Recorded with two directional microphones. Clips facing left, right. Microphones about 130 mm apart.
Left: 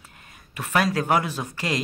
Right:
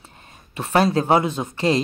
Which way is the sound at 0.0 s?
30° right (ahead or behind).